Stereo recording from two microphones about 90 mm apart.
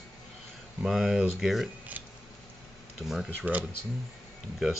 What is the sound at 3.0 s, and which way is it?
Speech, 5° right (ahead or behind).